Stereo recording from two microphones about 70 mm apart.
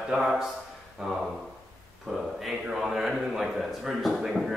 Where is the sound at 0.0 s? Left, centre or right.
Centre.